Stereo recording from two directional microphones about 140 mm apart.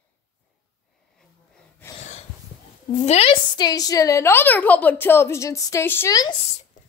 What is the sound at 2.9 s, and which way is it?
Speech, 50° left (ahead or behind).